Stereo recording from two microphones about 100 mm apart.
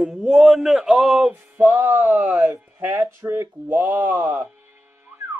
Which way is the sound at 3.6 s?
15° right (ahead or behind).